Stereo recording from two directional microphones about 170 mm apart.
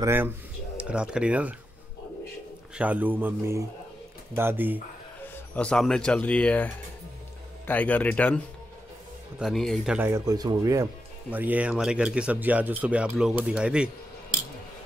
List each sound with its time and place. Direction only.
0.0 s speech: 15° right (ahead or behind)
2.8 s speech: 10° right (ahead or behind)
5.5 s speech: 5° left (ahead or behind)
9.4 s speech: centre (ahead or behind)
9.9 s speech: 15° right (ahead or behind)
11.2 s speech: 10° right (ahead or behind)